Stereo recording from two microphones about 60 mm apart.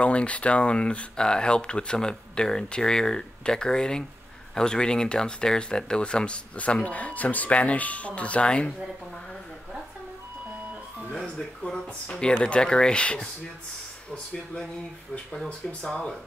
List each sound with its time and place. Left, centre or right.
0.0 s speech: left
11.6 s speech: centre